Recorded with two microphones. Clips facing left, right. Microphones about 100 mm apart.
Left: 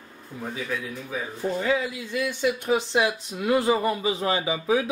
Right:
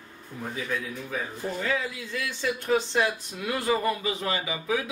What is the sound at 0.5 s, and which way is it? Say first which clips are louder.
Speech: even; 5° left (ahead or behind).